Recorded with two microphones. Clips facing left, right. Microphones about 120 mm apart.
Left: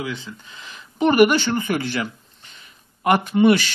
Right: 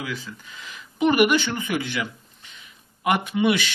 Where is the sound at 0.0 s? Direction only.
25° left (ahead or behind).